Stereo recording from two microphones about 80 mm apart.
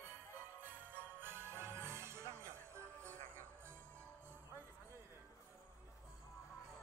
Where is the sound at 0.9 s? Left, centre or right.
Right.